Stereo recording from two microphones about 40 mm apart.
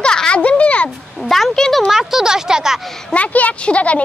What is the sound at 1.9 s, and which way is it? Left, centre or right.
Speech, centre.